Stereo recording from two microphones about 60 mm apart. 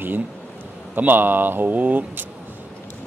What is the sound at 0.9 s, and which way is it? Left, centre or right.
Speech, right.